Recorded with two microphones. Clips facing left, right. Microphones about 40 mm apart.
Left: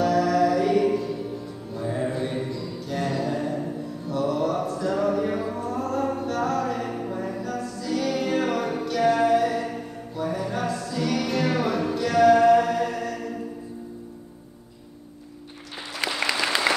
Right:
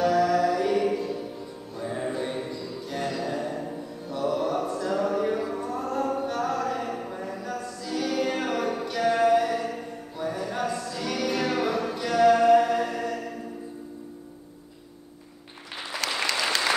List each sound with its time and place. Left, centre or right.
0.0 s mantra: centre
3.2 s music: centre
4.1 s mantra: centre
4.7 s a sound: centre
5.6 s music: centre
16.3 s applause: centre